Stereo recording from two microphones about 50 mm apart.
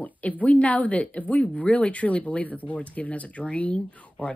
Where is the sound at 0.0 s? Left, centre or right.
Left.